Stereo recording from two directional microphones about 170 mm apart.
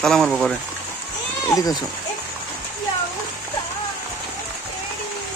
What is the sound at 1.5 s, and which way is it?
Speech, 20° left (ahead or behind).